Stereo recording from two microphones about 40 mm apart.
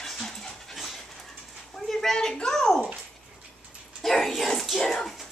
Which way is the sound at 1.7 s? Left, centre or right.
Centre.